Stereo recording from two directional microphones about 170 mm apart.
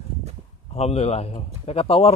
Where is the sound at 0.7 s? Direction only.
40° left (ahead or behind).